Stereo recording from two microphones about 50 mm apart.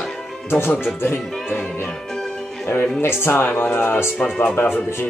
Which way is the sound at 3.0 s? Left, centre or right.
Left.